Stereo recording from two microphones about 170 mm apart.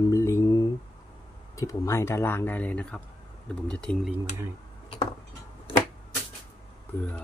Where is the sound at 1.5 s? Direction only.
20° left (ahead or behind).